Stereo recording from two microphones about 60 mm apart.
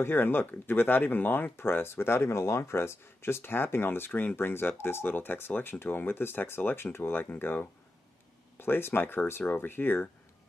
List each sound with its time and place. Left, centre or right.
0.0 s speech: left